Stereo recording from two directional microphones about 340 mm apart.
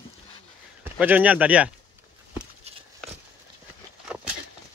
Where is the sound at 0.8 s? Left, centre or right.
Centre.